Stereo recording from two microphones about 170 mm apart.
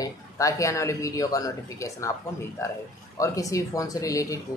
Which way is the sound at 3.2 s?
20° left (ahead or behind).